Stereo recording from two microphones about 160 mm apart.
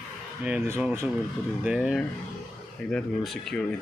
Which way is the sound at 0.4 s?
5° right (ahead or behind).